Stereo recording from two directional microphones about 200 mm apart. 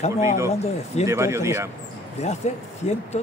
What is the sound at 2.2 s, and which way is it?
Speech, 35° left (ahead or behind).